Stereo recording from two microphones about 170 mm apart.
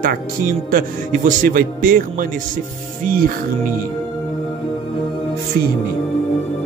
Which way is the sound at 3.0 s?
55° right (ahead or behind).